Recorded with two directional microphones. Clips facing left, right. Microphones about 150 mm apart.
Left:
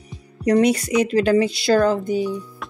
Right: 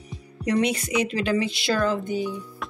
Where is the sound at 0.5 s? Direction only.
40° left (ahead or behind).